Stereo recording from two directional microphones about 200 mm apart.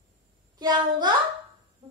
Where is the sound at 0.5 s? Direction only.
20° right (ahead or behind).